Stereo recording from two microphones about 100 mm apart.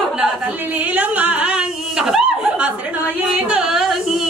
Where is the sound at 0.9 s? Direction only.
15° right (ahead or behind).